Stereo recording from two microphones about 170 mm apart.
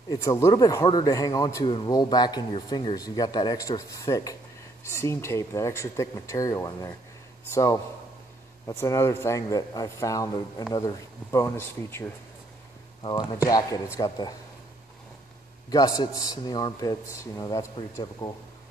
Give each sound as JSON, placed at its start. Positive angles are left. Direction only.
{"t": 0.1, "sound": "a man's voice", "side_deg": 20}
{"t": 13.0, "sound": "a man's voice", "side_deg": 25}
{"t": 15.7, "sound": "a man's voice", "side_deg": 20}